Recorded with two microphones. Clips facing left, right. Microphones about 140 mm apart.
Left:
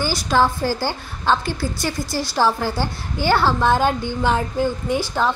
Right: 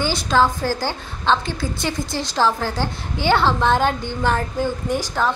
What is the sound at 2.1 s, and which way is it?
Speech, 20° right (ahead or behind).